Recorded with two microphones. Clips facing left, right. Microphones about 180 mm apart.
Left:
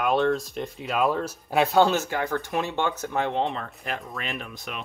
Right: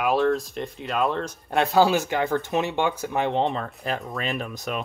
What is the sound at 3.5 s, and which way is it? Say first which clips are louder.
Speech: right 4 dB; 40° right (ahead or behind).